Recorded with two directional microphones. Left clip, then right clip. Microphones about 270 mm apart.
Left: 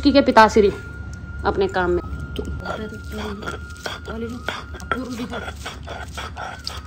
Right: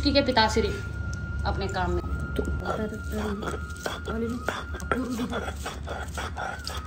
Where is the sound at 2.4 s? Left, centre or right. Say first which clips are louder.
Left 1 dB; centre.